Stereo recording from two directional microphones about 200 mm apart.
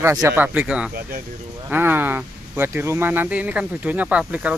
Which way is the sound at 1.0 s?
45° right (ahead or behind).